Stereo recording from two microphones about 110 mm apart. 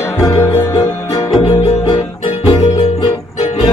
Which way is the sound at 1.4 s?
50° left (ahead or behind).